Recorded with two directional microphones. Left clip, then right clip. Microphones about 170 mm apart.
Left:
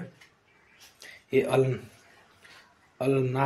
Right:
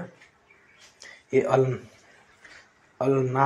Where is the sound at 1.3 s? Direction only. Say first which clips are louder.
Right 2 dB; 5° left (ahead or behind).